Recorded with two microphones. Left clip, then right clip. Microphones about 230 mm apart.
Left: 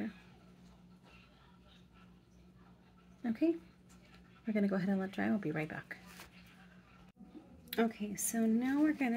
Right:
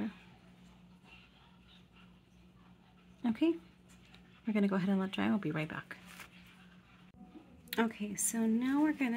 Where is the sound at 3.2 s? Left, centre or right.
Right.